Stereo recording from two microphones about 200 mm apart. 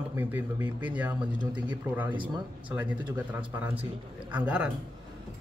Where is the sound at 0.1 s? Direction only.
10° right (ahead or behind).